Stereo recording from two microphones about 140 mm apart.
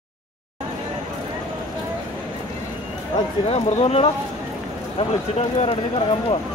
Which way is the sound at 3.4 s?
45° left (ahead or behind).